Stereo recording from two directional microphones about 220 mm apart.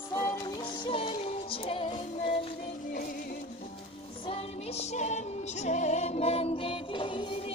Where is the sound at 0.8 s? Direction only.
25° left (ahead or behind).